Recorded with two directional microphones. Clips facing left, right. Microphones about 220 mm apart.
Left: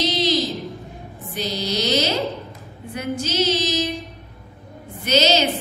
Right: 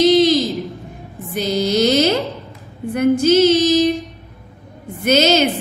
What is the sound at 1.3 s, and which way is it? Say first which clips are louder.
Music: right 8 dB; 50° right (ahead or behind).